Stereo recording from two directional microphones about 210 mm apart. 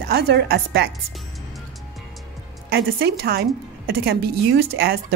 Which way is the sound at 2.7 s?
50° right (ahead or behind).